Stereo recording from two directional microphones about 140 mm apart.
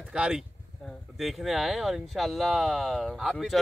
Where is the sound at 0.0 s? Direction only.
5° right (ahead or behind).